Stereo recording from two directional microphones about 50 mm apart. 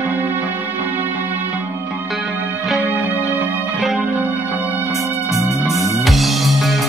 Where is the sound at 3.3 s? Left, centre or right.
Right.